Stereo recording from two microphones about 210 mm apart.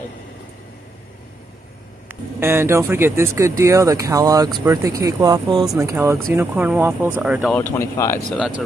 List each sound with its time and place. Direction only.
2.0 s speech: 10° right (ahead or behind)
7.5 s speech: 10° left (ahead or behind)
8.3 s speech: 5° right (ahead or behind)